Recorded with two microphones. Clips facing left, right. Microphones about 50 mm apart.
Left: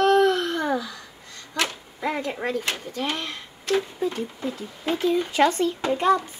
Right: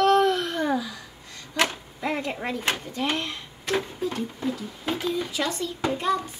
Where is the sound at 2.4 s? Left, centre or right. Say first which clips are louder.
Left 1 dB; centre.